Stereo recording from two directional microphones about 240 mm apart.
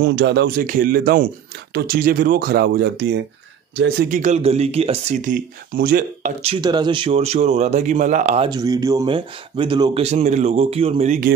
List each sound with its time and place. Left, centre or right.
0.0 s speech: right
4.2 s speech: right
6.4 s speech: centre
8.5 s speech: centre; by 11.3 s right